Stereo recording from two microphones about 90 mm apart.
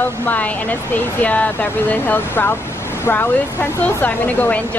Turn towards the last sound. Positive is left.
turn(degrees=20)  # may be behind; listen again after turning